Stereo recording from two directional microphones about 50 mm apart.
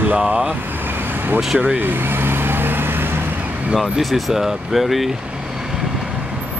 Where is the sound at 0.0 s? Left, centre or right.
Right.